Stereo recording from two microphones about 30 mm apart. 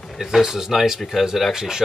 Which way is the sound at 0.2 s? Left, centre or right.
Centre.